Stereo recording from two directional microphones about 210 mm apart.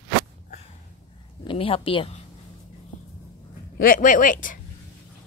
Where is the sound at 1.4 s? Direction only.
25° left (ahead or behind).